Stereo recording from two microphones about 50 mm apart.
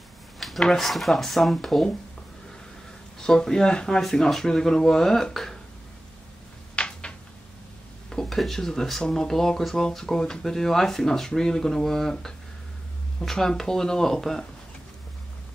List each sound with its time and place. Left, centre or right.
0.4 s speech: centre
3.2 s speech: centre
6.7 s a sound: left
8.1 s speech: centre